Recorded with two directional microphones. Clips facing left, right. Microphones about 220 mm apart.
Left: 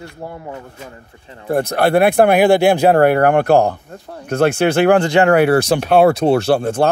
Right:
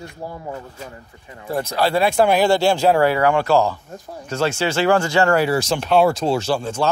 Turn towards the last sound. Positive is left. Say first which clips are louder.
# left 6 dB
turn(degrees=60)  # may be behind; listen again after turning